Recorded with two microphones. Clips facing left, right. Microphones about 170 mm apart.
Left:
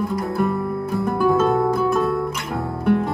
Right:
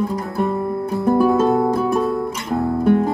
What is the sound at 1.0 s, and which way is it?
Music, 30° right (ahead or behind).